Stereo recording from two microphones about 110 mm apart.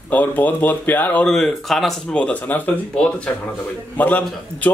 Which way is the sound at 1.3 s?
Centre (ahead or behind).